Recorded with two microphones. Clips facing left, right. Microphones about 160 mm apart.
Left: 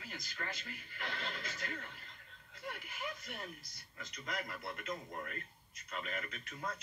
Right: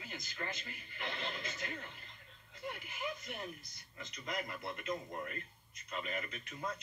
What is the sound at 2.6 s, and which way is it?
A woman's voice, centre (ahead or behind).